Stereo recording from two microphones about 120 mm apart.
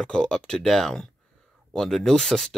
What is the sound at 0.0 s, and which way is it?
Speech, 5° left (ahead or behind).